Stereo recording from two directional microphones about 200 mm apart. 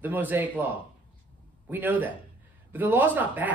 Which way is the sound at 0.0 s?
10° right (ahead or behind).